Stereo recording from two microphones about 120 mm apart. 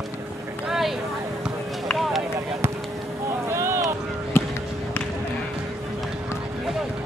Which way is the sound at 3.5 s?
20° right (ahead or behind).